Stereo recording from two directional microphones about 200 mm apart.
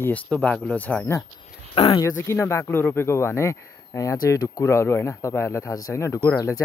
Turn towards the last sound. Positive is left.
turn(degrees=15)  # may be behind; listen again after turning